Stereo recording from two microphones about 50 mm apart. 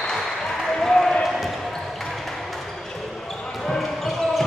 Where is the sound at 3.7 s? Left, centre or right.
Centre.